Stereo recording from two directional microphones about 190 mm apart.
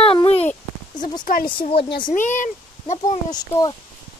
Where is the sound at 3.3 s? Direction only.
20° left (ahead or behind).